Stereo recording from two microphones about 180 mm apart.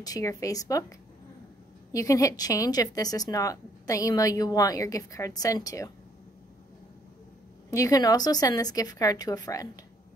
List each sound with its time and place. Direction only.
0.0 s speech: 20° left (ahead or behind)
7.7 s speech: 20° left (ahead or behind)